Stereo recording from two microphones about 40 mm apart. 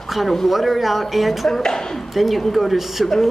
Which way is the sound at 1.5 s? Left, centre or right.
Centre.